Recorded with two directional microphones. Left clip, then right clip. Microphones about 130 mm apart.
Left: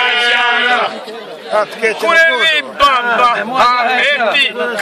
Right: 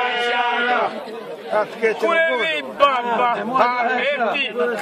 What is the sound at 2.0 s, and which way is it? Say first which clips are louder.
A man's voice: left 10 dB; 5° left (ahead or behind).